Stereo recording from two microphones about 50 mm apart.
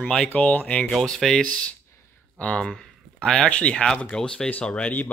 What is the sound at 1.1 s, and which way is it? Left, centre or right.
Speech, centre.